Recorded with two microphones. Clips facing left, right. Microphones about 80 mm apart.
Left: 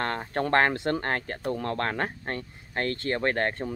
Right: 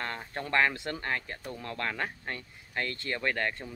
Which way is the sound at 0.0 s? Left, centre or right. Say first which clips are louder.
Left 8 dB; left.